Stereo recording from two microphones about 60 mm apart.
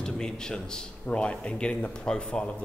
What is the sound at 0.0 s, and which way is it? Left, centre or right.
Speech, centre.